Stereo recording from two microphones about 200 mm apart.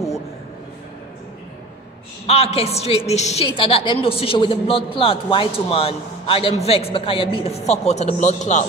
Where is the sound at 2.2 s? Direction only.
30° left (ahead or behind).